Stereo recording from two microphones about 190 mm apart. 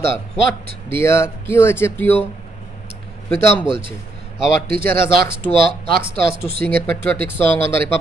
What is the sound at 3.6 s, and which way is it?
Speech, 25° right (ahead or behind).